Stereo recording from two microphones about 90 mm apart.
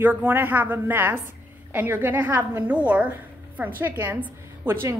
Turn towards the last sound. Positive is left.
turn(degrees=-20)  # may be behind; listen again after turning